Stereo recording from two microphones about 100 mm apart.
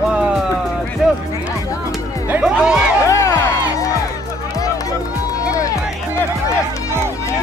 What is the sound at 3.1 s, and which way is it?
Music, 30° left (ahead or behind).